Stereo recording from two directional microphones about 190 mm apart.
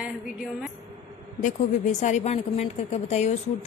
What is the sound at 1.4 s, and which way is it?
A woman's voice, 40° left (ahead or behind).